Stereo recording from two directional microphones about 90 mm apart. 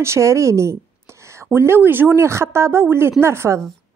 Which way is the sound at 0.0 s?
30° right (ahead or behind).